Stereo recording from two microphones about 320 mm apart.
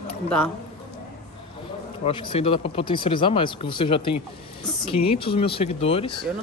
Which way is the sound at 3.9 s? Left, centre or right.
Left.